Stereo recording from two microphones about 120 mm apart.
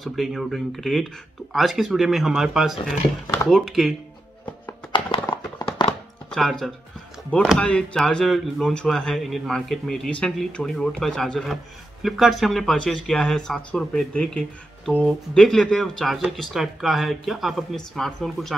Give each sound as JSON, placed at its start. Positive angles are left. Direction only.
{"t": 0.0, "sound": "speech", "side_deg": 0}
{"t": 4.9, "sound": "a sound", "side_deg": 45}
{"t": 5.8, "sound": "chopping", "side_deg": 40}
{"t": 6.3, "sound": "speech", "side_deg": 0}